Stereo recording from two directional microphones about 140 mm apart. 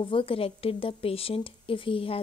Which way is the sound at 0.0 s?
40° left (ahead or behind).